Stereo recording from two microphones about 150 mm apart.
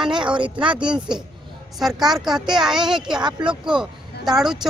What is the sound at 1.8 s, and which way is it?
Speech, centre (ahead or behind).